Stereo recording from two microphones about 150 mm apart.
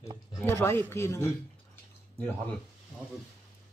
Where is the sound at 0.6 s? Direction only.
15° left (ahead or behind).